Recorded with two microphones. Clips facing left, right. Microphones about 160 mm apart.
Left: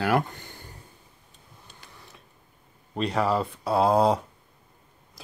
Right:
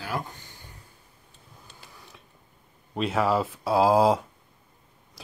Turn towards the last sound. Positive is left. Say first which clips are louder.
# even
turn(degrees=0)  # may be behind; listen again after turning